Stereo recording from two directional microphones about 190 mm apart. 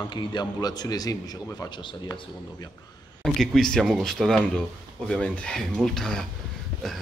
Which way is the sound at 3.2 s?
Centre (ahead or behind).